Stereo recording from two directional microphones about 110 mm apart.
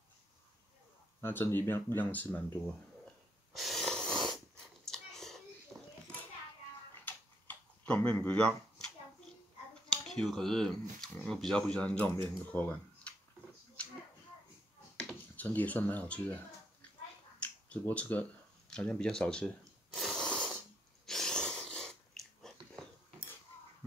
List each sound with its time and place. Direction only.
1.2 s speech: 20° left (ahead or behind)
3.5 s wheeze: centre (ahead or behind)
4.8 s whispering: 5° left (ahead or behind)
5.7 s children playing: 5° left (ahead or behind)
7.1 s tick-tock: 15° left (ahead or behind)
9.8 s speech: 5° left (ahead or behind)
15.0 s a sound: 15° left (ahead or behind)
17.6 s a sound: 15° left (ahead or behind)
21.0 s sneeze: 5° left (ahead or behind)